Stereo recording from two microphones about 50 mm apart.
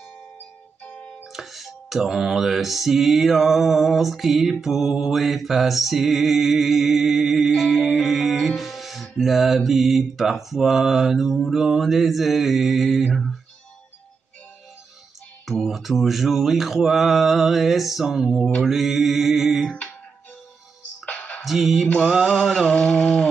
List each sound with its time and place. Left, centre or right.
0.8 s music: left
1.3 s music: centre
15.6 s music: centre
21.0 s music: left
21.4 s music: centre
21.8 s mantra: left
22.1 s mantra: centre